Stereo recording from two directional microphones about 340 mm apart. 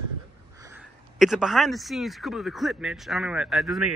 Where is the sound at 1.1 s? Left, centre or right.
Centre.